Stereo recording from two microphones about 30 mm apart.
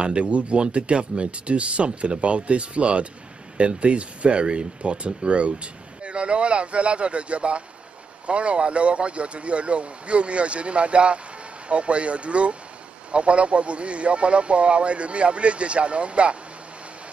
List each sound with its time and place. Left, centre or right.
0.0 s speech: right